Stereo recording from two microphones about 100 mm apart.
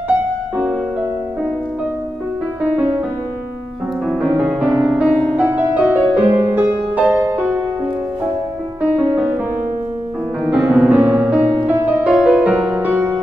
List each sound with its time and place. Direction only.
4.4 s music: 10° right (ahead or behind)
10.4 s music: 15° right (ahead or behind)